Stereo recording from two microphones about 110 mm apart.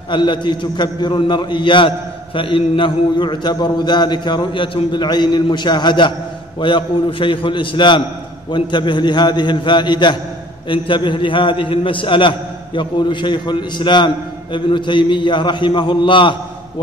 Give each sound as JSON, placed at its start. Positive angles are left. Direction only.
{"t": 0.1, "sound": "a man's voice", "side_deg": 45}